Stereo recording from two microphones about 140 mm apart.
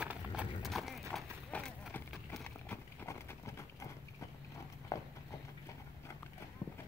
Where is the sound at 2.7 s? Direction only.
20° left (ahead or behind).